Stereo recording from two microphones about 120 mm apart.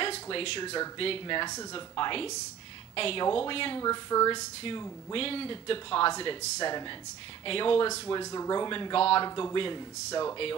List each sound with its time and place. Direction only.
0.0 s speech: 50° left (ahead or behind)
3.8 s speech: 30° left (ahead or behind)
5.1 s speech: 50° left (ahead or behind)
7.4 s speech: 45° left (ahead or behind)
8.2 s speech: 30° left (ahead or behind); by 9.2 s 50° left (ahead or behind)
9.2 s speech: 35° left (ahead or behind)